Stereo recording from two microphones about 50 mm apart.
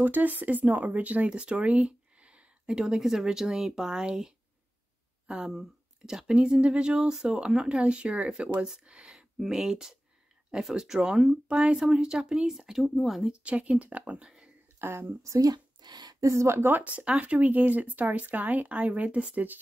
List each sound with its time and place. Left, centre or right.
0.0 s speech: right
9.4 s speech: centre
13.3 s speech: right
14.8 s speech: right
16.2 s speech: right
16.5 s speech: right
16.8 s speech: right